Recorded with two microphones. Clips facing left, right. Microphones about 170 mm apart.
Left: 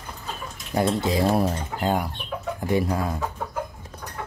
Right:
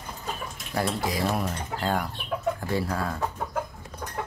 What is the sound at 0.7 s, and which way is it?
Speech, 25° left (ahead or behind).